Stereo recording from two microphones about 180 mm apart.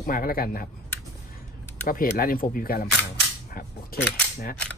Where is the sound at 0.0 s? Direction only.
55° left (ahead or behind).